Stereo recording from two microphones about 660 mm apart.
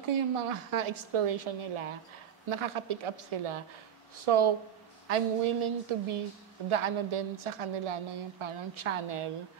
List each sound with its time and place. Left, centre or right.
0.5 s a woman's voice: right
2.5 s a woman's voice: right
6.7 s a woman's voice: right